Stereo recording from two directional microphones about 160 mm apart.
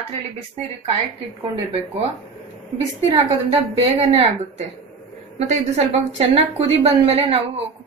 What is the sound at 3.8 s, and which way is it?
A woman's voice, 40° right (ahead or behind).